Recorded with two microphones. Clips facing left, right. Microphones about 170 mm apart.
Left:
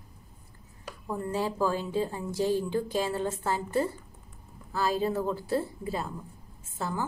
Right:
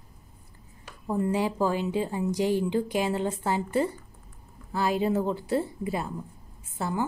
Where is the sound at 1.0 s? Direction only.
15° right (ahead or behind).